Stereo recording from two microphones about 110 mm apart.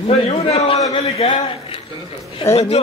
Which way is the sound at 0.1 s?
65° left (ahead or behind).